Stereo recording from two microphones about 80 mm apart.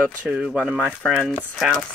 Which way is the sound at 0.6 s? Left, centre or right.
Centre.